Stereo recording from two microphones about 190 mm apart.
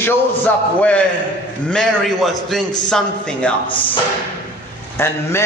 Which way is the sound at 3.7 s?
25° left (ahead or behind).